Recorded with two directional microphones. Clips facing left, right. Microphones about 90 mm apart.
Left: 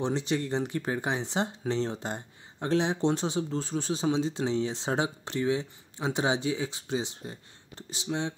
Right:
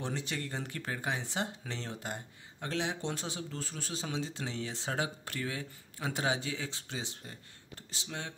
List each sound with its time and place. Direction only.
0.0 s speech: 20° left (ahead or behind)